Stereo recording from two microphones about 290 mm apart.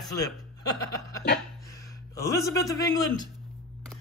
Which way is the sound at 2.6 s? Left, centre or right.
Centre.